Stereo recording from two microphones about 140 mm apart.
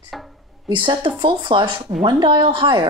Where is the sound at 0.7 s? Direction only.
35° right (ahead or behind).